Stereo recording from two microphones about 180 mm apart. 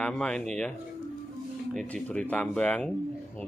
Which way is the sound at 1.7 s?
5° left (ahead or behind).